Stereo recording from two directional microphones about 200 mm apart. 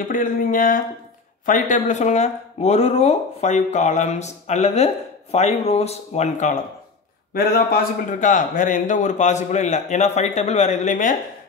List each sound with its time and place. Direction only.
0.1 s speech: 45° left (ahead or behind)